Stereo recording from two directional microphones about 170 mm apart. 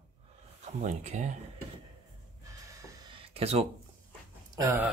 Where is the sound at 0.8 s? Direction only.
45° right (ahead or behind).